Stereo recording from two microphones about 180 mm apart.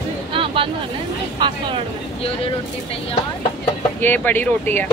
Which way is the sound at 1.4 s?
25° right (ahead or behind).